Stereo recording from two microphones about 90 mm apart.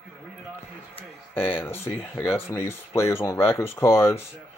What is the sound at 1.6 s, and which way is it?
Speech, 25° left (ahead or behind).